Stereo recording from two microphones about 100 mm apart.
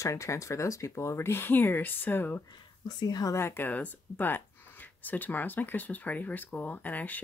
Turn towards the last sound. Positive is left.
turn(degrees=15)  # may be behind; listen again after turning